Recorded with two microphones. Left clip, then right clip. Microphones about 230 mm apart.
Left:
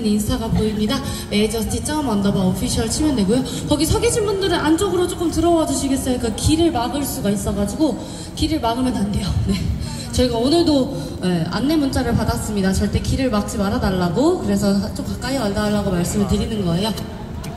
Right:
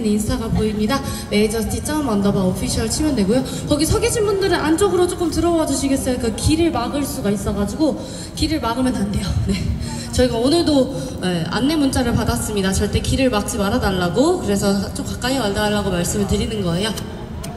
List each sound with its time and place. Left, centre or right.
0.0 s a woman's voice: centre